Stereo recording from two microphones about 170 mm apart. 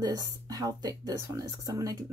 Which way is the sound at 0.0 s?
25° right (ahead or behind).